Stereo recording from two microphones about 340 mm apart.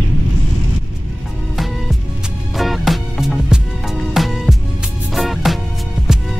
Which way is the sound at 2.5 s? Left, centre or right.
Centre.